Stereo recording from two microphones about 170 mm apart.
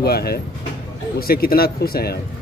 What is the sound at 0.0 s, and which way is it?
Speech, 65° left (ahead or behind).